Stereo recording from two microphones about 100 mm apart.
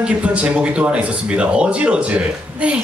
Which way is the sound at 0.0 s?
10° right (ahead or behind).